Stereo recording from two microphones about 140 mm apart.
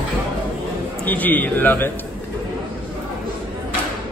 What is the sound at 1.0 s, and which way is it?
Speech, 10° left (ahead or behind).